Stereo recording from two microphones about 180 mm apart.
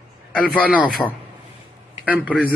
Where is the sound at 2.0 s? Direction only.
10° right (ahead or behind).